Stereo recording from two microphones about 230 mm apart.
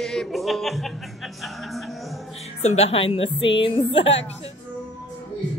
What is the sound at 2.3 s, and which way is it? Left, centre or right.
A woman's voice, left.